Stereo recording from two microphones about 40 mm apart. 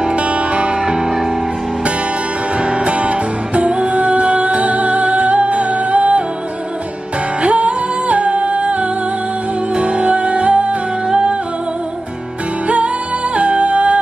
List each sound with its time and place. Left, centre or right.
0.1 s music: right; by 1.3 s centre
2.6 s music: right
7.4 s music: right
12.6 s music: right